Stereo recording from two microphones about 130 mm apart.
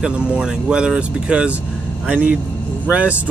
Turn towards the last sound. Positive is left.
turn(degrees=-10)  # may be behind; listen again after turning